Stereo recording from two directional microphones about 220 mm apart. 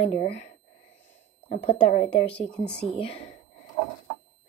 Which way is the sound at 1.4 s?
30° left (ahead or behind).